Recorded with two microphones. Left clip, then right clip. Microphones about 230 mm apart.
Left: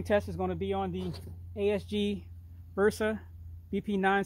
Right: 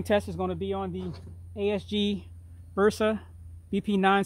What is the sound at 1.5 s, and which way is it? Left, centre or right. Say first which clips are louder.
Speech: right 1 dB; right.